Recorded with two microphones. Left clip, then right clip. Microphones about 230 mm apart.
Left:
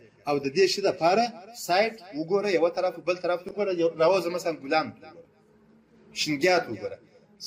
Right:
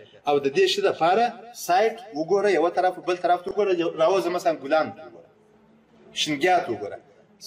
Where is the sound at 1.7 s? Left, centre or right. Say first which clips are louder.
Right 3 dB; left.